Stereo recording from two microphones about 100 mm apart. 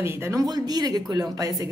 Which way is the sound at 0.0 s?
25° right (ahead or behind).